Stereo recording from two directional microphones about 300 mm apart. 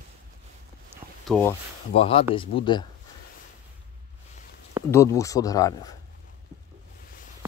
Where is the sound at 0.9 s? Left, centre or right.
Centre.